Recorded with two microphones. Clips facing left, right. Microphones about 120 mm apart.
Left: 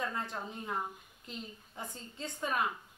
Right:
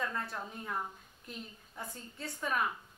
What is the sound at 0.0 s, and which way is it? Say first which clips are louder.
A woman's voice: even; 20° left (ahead or behind).